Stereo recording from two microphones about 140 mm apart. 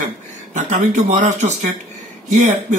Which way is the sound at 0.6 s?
55° right (ahead or behind).